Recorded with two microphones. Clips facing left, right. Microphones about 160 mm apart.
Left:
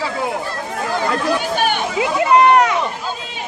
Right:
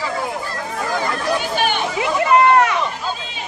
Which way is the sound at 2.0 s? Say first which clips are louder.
Left 2 dB; 20° left (ahead or behind).